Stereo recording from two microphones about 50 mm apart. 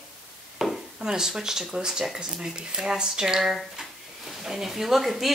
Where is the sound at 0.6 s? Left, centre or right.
Centre.